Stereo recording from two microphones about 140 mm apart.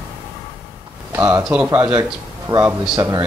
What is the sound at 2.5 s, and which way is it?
Speech, 35° right (ahead or behind).